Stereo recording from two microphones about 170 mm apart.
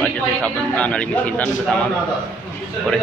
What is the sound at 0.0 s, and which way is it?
A man's voice, 10° left (ahead or behind).